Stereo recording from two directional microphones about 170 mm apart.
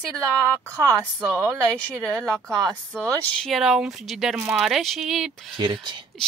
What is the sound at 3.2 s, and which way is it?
Speech, 5° left (ahead or behind).